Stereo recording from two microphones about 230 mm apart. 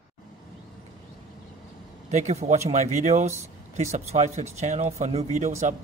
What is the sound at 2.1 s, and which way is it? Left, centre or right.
Speech, right.